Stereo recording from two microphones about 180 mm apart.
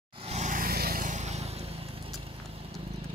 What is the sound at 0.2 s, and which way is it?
Vehicle, 40° right (ahead or behind).